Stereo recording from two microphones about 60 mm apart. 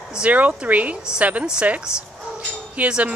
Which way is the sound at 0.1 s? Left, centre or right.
Right.